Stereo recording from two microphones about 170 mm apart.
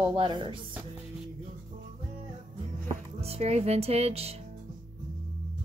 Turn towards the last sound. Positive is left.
turn(degrees=-35)  # may be behind; listen again after turning